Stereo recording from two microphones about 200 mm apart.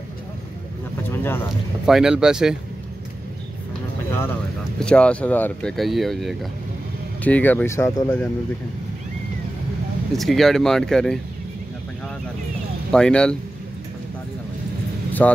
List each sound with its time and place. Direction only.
1.1 s a sound: 10° left (ahead or behind)
1.9 s speech: 5° right (ahead or behind)
4.7 s speech: 5° left (ahead or behind)
10.1 s speech: centre (ahead or behind)
12.9 s speech: 5° left (ahead or behind)
15.2 s speech: 5° left (ahead or behind)